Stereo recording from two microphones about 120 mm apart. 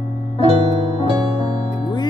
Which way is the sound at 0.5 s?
50° right (ahead or behind).